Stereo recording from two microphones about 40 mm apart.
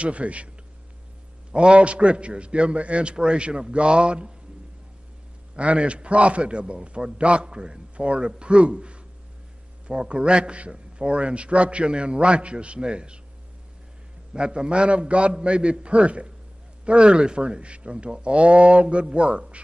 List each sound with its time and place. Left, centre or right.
0.0 s a man's voice: right
1.5 s a man's voice: right
5.6 s a man's voice: right
14.3 s a man's voice: right